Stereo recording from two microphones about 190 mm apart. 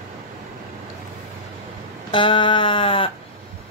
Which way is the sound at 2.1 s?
25° left (ahead or behind).